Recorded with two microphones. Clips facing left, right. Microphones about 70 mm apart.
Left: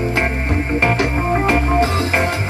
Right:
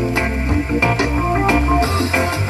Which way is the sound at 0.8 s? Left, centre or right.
Left.